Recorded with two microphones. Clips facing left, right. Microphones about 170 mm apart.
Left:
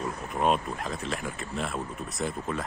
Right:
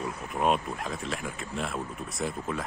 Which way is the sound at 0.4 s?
Centre (ahead or behind).